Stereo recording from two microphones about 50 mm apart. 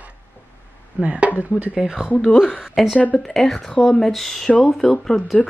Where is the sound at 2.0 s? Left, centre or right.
Left.